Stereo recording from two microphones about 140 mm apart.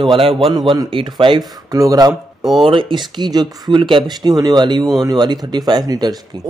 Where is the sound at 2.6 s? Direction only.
35° right (ahead or behind).